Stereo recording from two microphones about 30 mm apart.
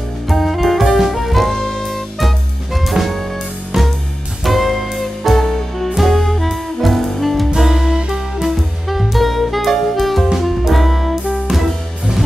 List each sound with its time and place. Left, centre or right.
0.3 s saxophone: centre
3.7 s music: centre
4.5 s music: centre
7.5 s music: centre
8.5 s music: centre
10.3 s music: centre
10.7 s music: centre